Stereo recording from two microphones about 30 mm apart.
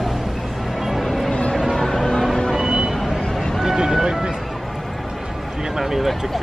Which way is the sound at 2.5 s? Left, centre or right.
Centre.